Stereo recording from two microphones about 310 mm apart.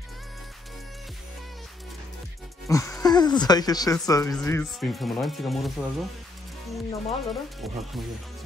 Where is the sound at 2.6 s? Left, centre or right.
Centre.